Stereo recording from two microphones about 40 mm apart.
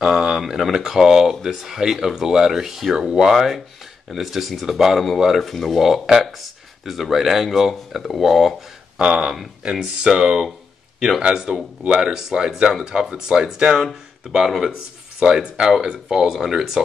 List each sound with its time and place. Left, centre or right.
0.0 s speech: centre
16.3 s speech: centre